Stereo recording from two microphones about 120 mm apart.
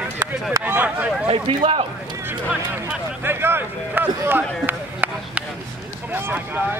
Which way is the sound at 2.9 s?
20° right (ahead or behind).